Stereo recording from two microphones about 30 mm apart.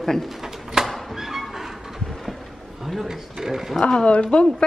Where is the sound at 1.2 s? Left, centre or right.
Centre.